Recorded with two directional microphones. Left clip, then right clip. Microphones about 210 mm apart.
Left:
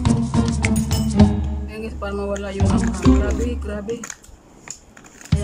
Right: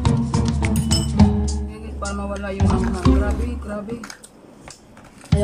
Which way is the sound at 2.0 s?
20° left (ahead or behind).